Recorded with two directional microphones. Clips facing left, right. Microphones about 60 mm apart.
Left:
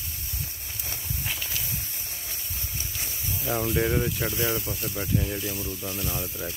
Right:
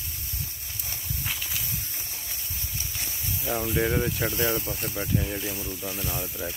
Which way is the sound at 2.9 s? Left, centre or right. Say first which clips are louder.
Even; centre.